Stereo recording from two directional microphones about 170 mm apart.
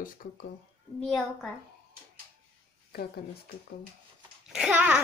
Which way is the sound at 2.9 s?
65° left (ahead or behind).